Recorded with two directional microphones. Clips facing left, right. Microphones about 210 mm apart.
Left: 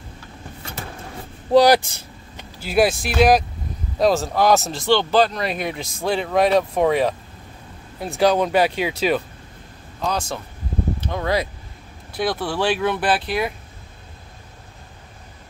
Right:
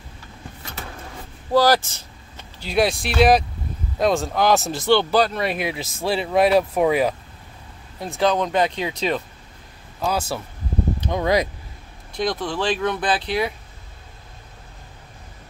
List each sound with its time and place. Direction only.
1.5 s speech: 15° left (ahead or behind); by 7.2 s 5° right (ahead or behind)
8.0 s speech: 10° left (ahead or behind)
10.0 s speech: 5° right (ahead or behind)
12.1 s speech: 5° left (ahead or behind)